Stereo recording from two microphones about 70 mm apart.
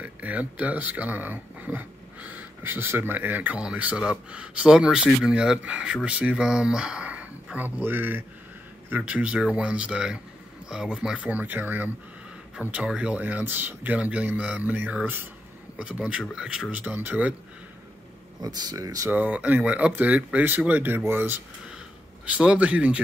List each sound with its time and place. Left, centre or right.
0.0 s speech: right
8.9 s speech: centre
11.1 s speech: right
12.5 s speech: centre
16.7 s speech: right
18.4 s speech: right
19.0 s speech: right
21.6 s a sound: centre